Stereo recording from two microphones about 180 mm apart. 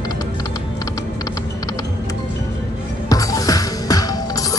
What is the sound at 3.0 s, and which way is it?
Music, 20° left (ahead or behind).